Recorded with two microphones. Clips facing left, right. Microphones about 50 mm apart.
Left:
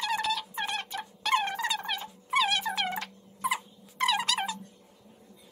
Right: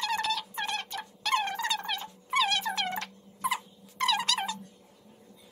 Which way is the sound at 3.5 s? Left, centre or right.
Centre.